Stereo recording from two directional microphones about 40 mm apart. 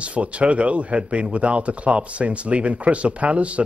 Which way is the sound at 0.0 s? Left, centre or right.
Right.